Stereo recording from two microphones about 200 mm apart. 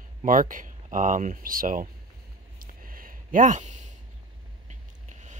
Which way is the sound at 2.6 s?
45° right (ahead or behind).